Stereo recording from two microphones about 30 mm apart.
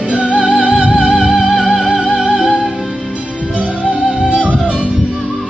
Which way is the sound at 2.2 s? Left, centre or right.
Right.